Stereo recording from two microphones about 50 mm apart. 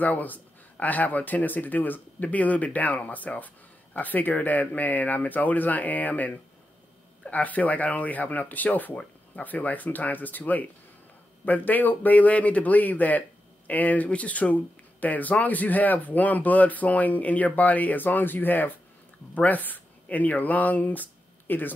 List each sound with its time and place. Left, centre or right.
0.0 s speech: left